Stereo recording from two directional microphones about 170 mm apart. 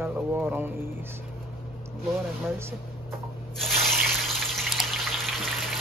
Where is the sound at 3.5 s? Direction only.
Centre (ahead or behind).